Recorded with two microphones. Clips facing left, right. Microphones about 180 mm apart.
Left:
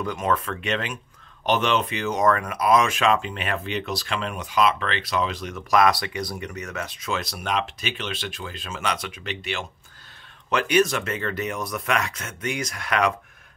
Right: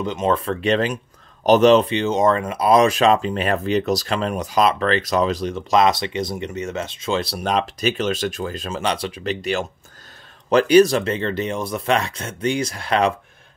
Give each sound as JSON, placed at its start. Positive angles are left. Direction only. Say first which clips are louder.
{"t": 0.0, "sound": "speech", "louder": "right 4 dB", "side_deg": -25}